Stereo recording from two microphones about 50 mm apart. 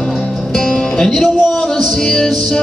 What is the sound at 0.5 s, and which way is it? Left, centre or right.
Music, centre.